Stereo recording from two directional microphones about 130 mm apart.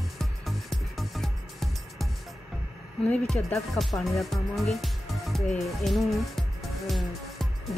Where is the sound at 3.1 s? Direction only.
10° left (ahead or behind).